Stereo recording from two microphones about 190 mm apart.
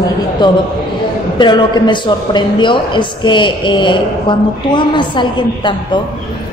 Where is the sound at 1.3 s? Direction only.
25° left (ahead or behind).